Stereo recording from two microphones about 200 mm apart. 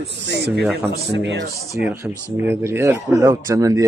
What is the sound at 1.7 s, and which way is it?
Speech, 10° right (ahead or behind).